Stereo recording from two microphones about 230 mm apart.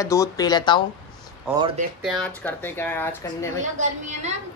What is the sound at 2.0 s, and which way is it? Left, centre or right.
Speech, centre.